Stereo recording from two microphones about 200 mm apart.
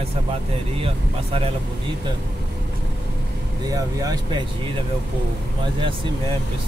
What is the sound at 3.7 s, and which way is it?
Speech, 20° right (ahead or behind).